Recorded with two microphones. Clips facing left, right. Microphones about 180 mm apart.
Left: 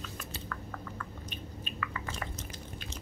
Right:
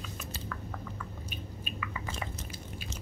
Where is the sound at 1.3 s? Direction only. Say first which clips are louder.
Right 1 dB; 10° right (ahead or behind).